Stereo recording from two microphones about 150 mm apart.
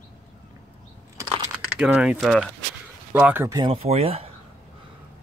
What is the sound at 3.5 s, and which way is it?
Speech, 30° right (ahead or behind).